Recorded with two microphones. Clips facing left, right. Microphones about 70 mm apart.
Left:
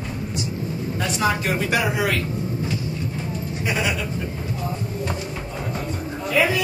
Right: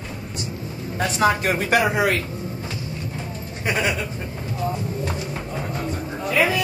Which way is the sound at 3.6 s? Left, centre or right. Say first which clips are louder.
Right 2 dB; right.